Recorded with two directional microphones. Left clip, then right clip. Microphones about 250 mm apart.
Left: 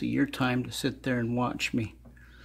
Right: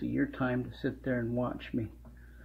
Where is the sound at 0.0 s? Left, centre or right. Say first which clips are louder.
Left 4 dB; left.